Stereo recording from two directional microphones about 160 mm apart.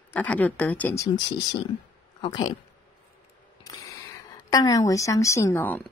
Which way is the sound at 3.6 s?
25° left (ahead or behind).